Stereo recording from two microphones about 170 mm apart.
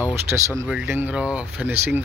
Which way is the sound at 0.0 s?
15° right (ahead or behind).